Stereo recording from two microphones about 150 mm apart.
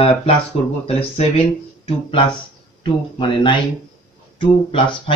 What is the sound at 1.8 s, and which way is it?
Speech, 35° left (ahead or behind).